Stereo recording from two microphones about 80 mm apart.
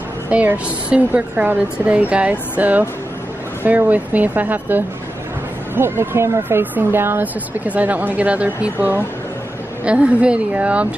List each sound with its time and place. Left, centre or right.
0.3 s a woman's voice: centre
9.8 s a woman's voice: centre